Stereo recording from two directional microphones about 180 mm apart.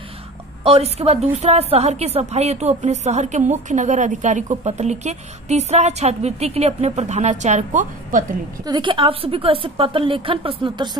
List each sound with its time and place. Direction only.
0.7 s a woman's voice: 35° right (ahead or behind)
8.6 s a woman's voice: 25° right (ahead or behind)